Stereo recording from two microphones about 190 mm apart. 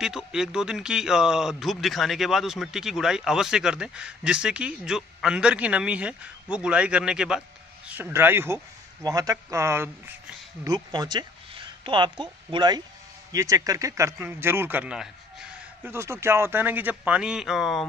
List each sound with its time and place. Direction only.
0.0 s a man's voice: 5° right (ahead or behind)